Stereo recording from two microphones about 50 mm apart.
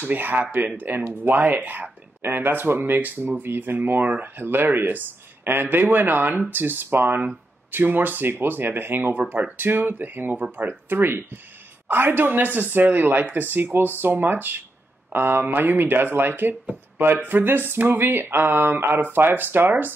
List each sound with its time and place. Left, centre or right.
0.0 s speech: right